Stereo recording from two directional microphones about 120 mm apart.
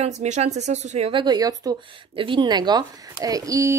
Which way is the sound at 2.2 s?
40° right (ahead or behind).